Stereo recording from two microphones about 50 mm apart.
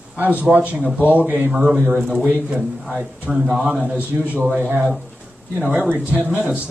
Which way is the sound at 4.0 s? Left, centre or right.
Right.